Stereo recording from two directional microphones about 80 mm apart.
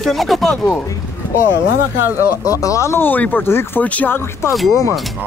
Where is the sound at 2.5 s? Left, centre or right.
Left.